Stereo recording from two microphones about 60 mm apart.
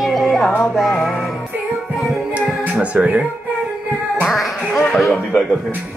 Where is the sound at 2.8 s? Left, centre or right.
Right.